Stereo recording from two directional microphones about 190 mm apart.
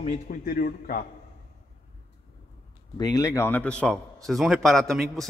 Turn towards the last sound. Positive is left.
turn(degrees=0)  # may be behind; listen again after turning